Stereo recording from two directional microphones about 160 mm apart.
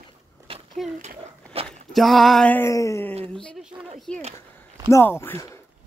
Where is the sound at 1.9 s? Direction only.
Centre (ahead or behind); by 3.1 s 20° left (ahead or behind).